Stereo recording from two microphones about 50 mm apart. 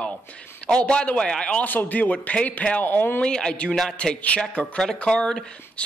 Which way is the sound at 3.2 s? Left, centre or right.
Centre.